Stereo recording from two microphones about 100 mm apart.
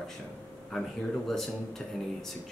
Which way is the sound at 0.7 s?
5° left (ahead or behind).